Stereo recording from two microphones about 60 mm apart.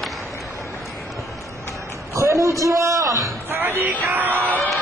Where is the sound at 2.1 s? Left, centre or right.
Right.